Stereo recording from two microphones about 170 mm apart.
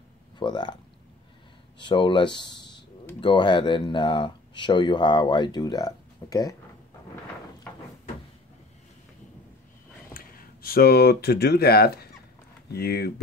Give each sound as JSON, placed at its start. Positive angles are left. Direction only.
{"t": 0.4, "sound": "speech", "side_deg": 25}
{"t": 1.8, "sound": "speech", "side_deg": 30}
{"t": 7.7, "sound": "a sound", "side_deg": 10}
{"t": 10.1, "sound": "speech", "side_deg": 55}